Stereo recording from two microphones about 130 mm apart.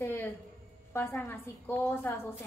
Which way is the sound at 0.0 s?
15° left (ahead or behind).